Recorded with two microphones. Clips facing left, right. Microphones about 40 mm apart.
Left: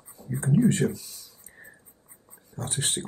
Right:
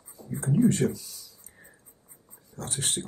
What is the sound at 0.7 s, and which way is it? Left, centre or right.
Speech, left.